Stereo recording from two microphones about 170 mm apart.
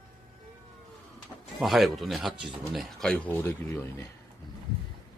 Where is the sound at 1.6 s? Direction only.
Centre (ahead or behind); by 4.1 s 15° left (ahead or behind).